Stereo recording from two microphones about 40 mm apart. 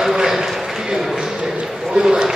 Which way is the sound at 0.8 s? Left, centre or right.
Centre.